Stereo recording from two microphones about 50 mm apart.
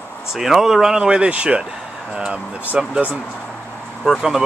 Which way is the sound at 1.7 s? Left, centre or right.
Centre.